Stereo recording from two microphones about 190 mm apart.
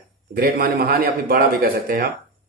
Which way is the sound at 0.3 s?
50° right (ahead or behind).